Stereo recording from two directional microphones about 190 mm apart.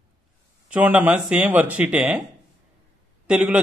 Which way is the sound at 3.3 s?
5° right (ahead or behind).